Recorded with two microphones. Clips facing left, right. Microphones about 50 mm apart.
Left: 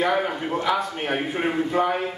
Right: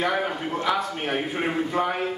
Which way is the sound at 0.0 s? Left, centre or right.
Centre.